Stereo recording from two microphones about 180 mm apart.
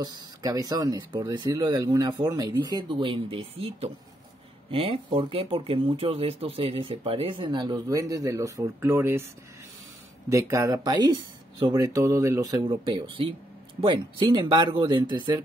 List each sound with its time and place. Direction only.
0.0 s speech: 20° right (ahead or behind)
10.3 s speech: 20° right (ahead or behind)